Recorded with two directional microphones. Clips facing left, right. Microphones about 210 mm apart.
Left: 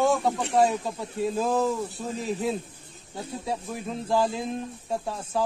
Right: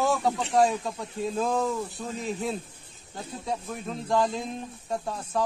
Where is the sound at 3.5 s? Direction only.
5° left (ahead or behind).